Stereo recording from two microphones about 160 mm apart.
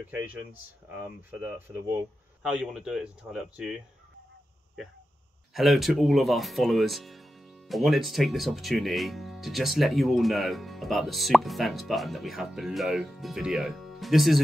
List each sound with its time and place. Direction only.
0.0 s speech: 10° right (ahead or behind)
5.5 s speech: centre (ahead or behind)